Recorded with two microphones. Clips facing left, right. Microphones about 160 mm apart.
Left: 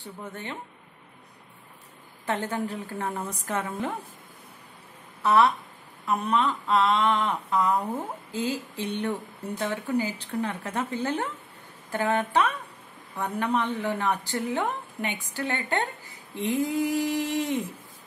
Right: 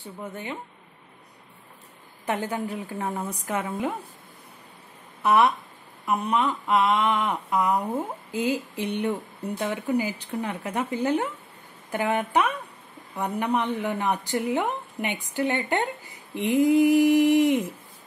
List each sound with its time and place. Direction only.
2.2 s a woman's voice: 10° right (ahead or behind)
5.2 s a woman's voice: 15° right (ahead or behind)
16.3 s a sound: 20° right (ahead or behind)